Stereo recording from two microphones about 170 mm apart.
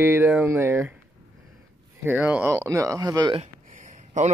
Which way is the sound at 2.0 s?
10° right (ahead or behind).